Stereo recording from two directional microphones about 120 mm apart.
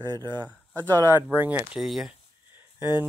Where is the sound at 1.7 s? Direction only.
Centre (ahead or behind).